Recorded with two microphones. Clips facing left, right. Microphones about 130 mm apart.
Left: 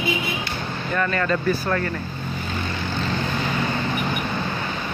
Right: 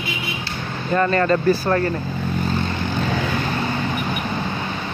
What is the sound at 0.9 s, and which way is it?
Speech, 35° right (ahead or behind).